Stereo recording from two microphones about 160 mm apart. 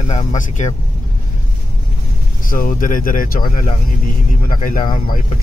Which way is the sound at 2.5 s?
60° left (ahead or behind).